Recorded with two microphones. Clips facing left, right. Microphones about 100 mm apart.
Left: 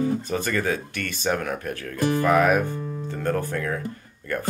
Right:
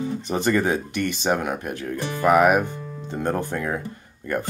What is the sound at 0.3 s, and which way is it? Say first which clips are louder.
Speech: right 4 dB; 20° right (ahead or behind).